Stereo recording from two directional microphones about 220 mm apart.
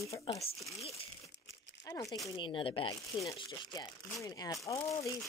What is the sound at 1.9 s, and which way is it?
Speech, 15° left (ahead or behind).